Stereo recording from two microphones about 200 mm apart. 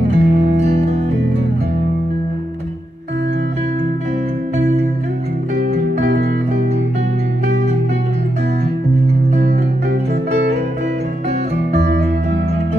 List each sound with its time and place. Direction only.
0.1 s music: 35° right (ahead or behind)
9.5 s music: 55° right (ahead or behind)